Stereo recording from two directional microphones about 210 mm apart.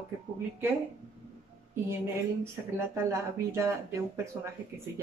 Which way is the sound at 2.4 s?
10° right (ahead or behind).